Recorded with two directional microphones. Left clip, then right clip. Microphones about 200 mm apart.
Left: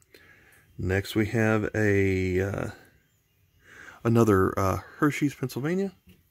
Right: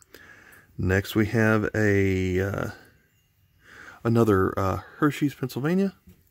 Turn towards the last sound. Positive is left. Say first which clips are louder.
# right 2 dB
turn(degrees=-5)  # may be behind; listen again after turning